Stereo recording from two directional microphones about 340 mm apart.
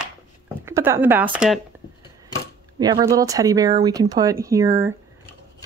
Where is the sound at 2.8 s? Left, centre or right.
Centre.